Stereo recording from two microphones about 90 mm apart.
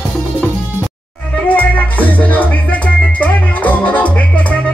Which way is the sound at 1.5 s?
20° left (ahead or behind).